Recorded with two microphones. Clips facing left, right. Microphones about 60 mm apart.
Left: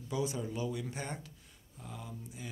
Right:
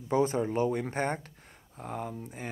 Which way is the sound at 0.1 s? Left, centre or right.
Right.